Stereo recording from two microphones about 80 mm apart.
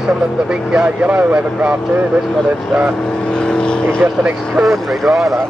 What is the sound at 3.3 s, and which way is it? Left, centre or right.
Speech, centre.